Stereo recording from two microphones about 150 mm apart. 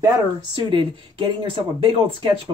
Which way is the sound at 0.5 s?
35° right (ahead or behind).